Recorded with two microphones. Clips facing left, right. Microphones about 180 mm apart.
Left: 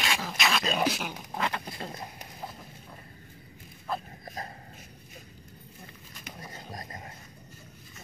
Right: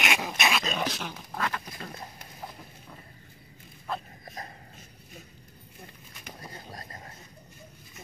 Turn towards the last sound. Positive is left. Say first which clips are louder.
# left 2 dB
turn(degrees=20)  # may be behind; listen again after turning